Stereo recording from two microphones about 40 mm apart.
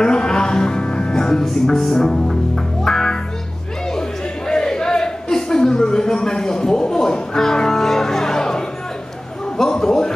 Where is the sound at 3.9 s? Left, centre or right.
Centre.